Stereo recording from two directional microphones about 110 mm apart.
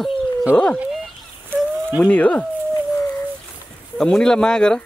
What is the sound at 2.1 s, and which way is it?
Speech, 15° left (ahead or behind).